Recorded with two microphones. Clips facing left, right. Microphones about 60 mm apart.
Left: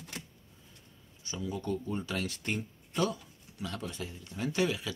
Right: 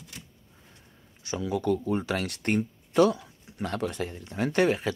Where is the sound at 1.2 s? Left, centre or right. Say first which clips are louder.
Right 8 dB; right.